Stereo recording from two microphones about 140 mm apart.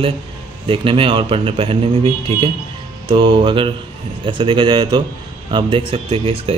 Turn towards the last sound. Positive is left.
turn(degrees=-45)  # may be behind; listen again after turning